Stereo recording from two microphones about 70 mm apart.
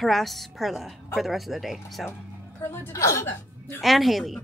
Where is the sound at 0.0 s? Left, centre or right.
Centre.